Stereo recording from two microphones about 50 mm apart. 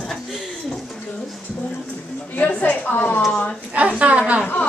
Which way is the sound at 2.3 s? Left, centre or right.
Left.